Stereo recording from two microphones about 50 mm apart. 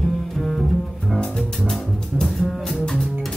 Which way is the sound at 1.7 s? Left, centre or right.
Centre.